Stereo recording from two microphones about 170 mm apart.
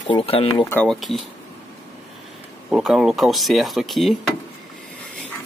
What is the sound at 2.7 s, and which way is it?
Speech, 5° right (ahead or behind).